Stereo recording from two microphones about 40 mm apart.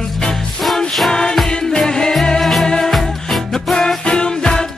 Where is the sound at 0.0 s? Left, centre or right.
Centre.